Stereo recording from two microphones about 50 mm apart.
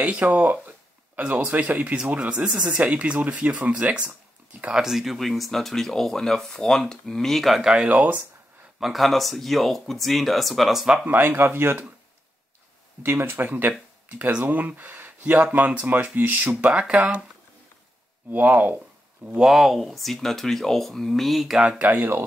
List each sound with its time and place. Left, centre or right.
0.0 s speech: right
2.7 s speech: right
4.7 s speech: centre
7.7 s speech: right
8.7 s speech: centre
11.1 s speech: right
13.0 s speech: right
16.7 s speech: right
18.3 s speech: right
19.4 s speech: centre
21.7 s speech: right